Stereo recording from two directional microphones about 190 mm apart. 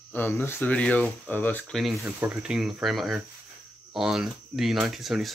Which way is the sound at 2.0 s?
10° right (ahead or behind).